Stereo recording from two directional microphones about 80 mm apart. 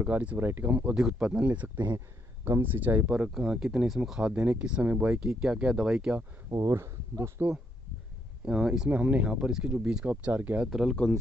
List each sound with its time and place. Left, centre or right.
0.0 s speech: centre
3.3 s speech: centre
6.7 s speech: right
8.5 s speech: centre
10.7 s speech: centre